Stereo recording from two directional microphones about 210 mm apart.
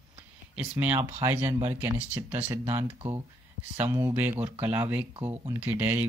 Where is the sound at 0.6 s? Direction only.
10° right (ahead or behind).